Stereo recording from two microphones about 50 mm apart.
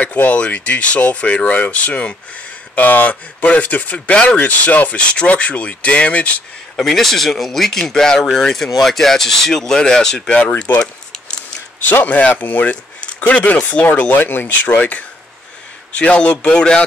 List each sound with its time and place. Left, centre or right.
0.0 s speech: left
2.7 s speech: left
6.8 s speech: centre
11.8 s speech: left
14.2 s speech: left
14.6 s speech: left